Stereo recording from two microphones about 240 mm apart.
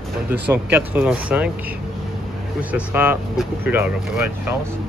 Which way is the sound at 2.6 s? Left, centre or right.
Centre.